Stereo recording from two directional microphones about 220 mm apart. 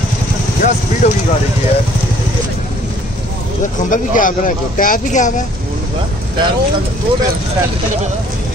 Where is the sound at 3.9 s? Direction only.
35° left (ahead or behind).